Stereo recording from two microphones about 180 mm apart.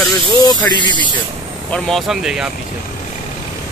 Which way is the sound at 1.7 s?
Centre (ahead or behind).